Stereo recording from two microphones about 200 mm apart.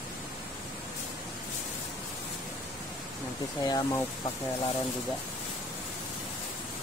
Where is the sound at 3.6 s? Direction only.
20° left (ahead or behind).